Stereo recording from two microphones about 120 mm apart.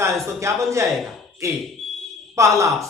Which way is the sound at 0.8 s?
Centre (ahead or behind).